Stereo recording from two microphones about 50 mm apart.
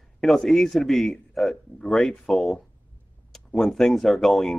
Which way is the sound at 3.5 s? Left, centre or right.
Centre.